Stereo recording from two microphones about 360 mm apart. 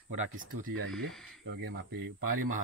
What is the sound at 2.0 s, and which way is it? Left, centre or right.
Speech, right.